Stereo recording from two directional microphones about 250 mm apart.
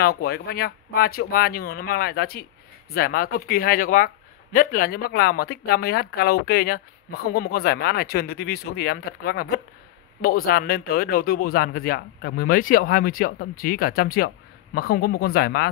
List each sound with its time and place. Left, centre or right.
0.0 s speech: left